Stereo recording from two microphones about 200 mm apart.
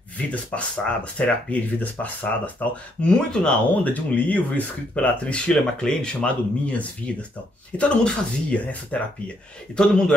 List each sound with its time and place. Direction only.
0.3 s speech: 5° left (ahead or behind)
9.8 s a man's voice: 5° left (ahead or behind)